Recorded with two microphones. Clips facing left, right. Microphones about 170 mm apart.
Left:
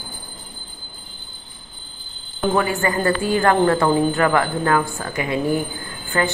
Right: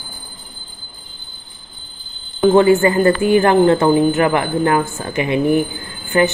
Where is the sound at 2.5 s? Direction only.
25° right (ahead or behind).